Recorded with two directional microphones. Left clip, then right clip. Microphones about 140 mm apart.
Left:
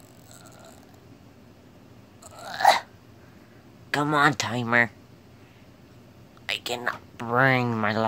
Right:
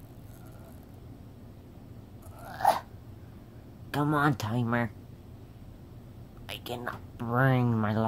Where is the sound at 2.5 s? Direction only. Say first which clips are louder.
Left 6 dB; 35° left (ahead or behind).